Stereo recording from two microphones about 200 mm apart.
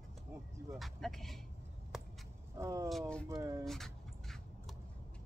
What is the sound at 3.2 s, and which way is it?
Speech, 15° right (ahead or behind).